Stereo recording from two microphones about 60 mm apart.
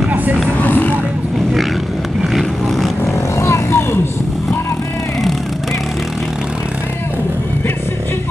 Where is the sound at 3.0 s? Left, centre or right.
Left.